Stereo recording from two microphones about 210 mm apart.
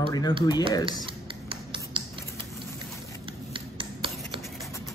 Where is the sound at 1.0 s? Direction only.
25° right (ahead or behind).